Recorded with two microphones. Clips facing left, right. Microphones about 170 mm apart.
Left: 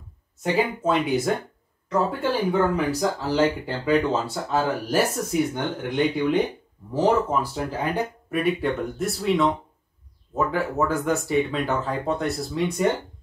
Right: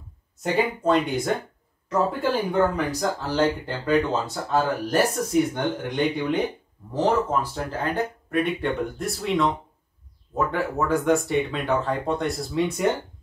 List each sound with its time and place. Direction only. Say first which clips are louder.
0.4 s speech: even; centre (ahead or behind)
8.5 s speech: left 1 dB; centre (ahead or behind)